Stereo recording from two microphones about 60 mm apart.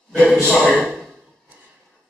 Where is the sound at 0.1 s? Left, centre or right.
Centre.